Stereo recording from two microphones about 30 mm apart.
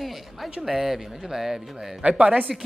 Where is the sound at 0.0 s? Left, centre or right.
Centre.